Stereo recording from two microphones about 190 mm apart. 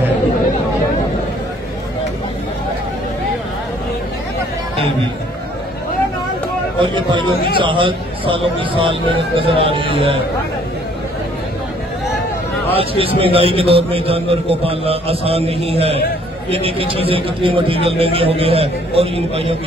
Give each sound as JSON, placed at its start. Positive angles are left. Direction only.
{"t": 6.8, "sound": "speech", "side_deg": -25}
{"t": 12.7, "sound": "a man's voice", "side_deg": -30}